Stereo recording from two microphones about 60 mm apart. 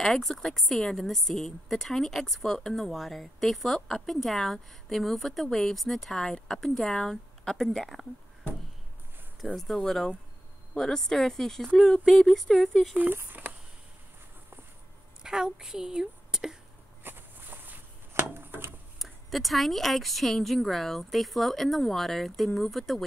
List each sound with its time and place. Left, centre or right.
0.0 s a woman's voice: centre
9.6 s a woman's voice: centre
12.9 s speech: right
15.2 s a woman's voice: centre
17.0 s a sound: right
18.9 s a woman's voice: centre